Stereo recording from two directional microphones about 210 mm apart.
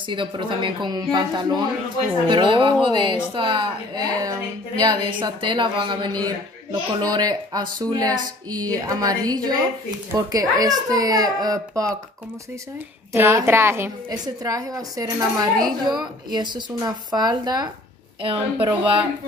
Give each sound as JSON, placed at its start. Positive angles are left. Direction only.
{"t": 0.1, "sound": "a woman's voice", "side_deg": -25}
{"t": 13.1, "sound": "a woman's voice", "side_deg": -10}